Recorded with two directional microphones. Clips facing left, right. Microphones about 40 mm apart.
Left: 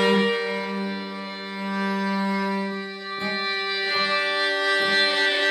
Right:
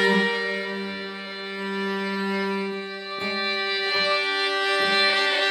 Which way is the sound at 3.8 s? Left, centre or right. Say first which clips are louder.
Left 1 dB; centre.